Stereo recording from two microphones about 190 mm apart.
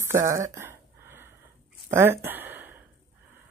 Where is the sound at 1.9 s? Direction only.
15° right (ahead or behind).